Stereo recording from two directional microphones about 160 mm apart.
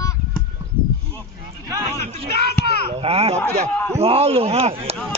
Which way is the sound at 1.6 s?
15° right (ahead or behind).